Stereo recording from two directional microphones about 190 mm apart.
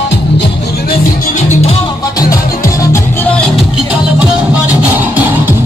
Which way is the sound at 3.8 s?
10° right (ahead or behind).